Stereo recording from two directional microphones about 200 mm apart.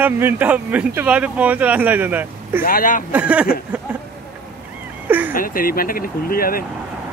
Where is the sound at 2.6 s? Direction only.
45° left (ahead or behind).